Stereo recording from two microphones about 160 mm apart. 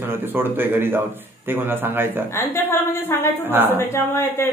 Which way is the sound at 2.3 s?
15° left (ahead or behind).